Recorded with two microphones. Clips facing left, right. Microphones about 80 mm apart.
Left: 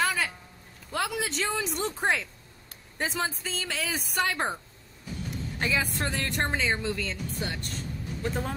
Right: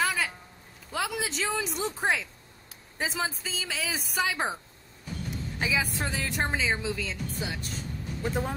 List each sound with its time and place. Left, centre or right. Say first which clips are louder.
0.0 s a sound: left 1 dB; centre
0.9 s a woman's voice: left 1 dB; centre
5.6 s a woman's voice: left 1 dB; centre